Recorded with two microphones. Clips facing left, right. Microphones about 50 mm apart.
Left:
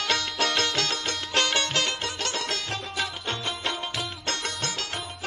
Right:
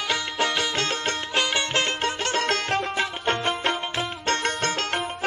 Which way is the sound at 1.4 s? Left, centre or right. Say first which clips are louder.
Even; centre.